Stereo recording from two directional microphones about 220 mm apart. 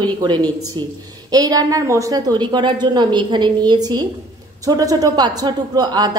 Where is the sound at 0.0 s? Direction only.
20° right (ahead or behind).